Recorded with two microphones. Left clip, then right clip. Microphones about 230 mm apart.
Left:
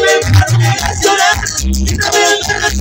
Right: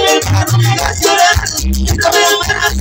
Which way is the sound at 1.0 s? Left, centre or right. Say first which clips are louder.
Right 1 dB; right.